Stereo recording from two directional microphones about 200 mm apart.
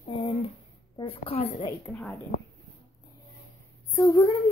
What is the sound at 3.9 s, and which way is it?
Speech, 15° left (ahead or behind).